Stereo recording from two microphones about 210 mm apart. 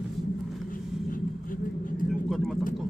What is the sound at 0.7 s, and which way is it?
Vehicle, 40° left (ahead or behind).